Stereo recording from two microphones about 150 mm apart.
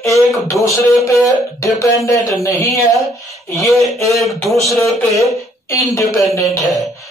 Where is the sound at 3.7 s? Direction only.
Centre (ahead or behind).